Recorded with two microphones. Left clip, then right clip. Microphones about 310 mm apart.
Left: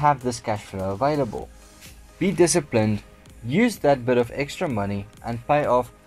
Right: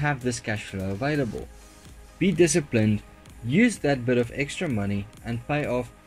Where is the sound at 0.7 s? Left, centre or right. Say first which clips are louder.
Left 7 dB; left.